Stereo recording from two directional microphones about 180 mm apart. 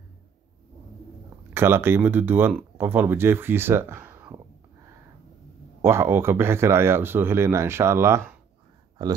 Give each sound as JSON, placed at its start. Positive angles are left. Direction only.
{"t": 1.5, "sound": "speech", "side_deg": -15}
{"t": 5.8, "sound": "speech", "side_deg": -15}